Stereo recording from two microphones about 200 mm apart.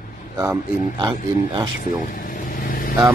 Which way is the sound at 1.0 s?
25° right (ahead or behind).